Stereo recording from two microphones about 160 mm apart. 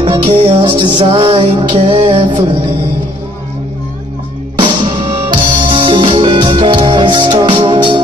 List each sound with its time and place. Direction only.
0.0 s music: 35° right (ahead or behind)
4.6 s music: 30° right (ahead or behind)